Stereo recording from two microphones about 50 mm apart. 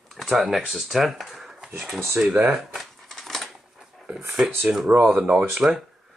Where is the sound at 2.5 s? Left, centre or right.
Centre.